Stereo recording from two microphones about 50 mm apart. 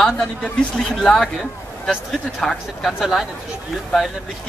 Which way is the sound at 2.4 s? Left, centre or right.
Centre.